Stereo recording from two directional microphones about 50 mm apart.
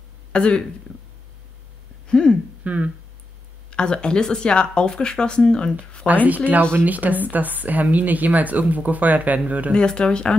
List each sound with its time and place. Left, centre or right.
0.3 s speech: centre
2.0 s speech: centre
2.6 s speech: right
3.7 s speech: centre
6.2 s speech: right
9.8 s speech: centre